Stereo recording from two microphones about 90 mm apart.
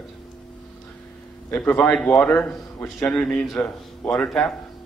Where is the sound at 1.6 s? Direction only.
15° left (ahead or behind).